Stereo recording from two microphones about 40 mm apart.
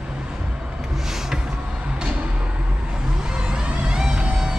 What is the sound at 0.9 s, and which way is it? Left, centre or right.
Music, centre.